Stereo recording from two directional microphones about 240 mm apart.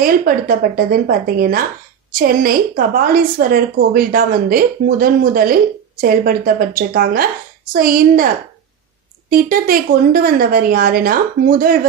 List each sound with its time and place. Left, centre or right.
0.0 s a woman's voice: right
9.3 s a woman's voice: right